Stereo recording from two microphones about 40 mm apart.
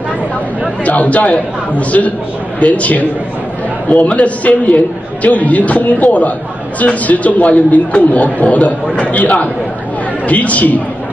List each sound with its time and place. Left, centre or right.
0.8 s a man's voice: left